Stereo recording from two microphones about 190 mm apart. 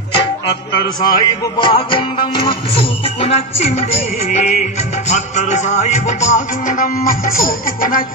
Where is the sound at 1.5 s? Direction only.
25° left (ahead or behind).